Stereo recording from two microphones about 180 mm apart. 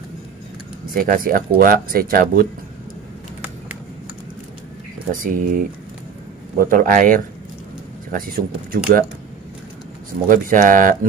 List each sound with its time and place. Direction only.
0.9 s speech: 50° right (ahead or behind)
5.1 s speech: 50° right (ahead or behind)
6.6 s speech: 50° right (ahead or behind)
10.2 s speech: 50° right (ahead or behind)